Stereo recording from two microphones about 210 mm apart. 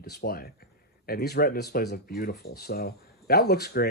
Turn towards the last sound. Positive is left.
turn(degrees=50)  # may be behind; listen again after turning